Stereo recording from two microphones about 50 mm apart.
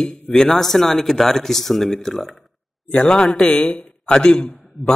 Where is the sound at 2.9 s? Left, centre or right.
Centre.